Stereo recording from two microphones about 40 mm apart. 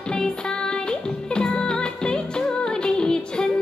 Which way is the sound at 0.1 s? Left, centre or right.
Left.